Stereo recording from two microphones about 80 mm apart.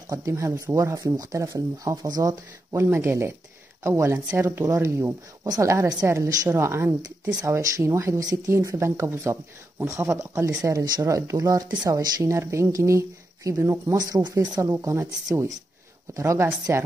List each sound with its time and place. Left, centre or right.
0.2 s speech: right
2.7 s speech: right
4.6 s speech: right
7.2 s speech: right
10.6 s speech: right
11.7 s speech: right
16.2 s speech: right